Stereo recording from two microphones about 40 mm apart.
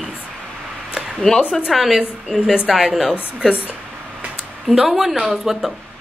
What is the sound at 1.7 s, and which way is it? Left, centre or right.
A woman's voice, centre.